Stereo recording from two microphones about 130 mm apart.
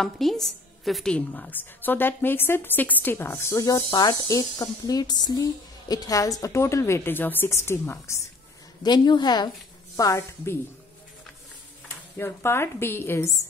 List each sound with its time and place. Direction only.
0.0 s a woman's voice: centre (ahead or behind); by 8.3 s 20° left (ahead or behind)
8.8 s a woman's voice: 35° left (ahead or behind)
12.2 s a woman's voice: 15° left (ahead or behind)